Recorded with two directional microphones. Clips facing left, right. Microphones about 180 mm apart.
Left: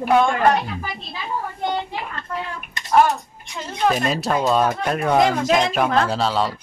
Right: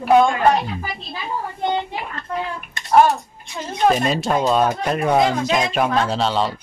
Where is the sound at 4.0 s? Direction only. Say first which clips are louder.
Right 2 dB; centre (ahead or behind).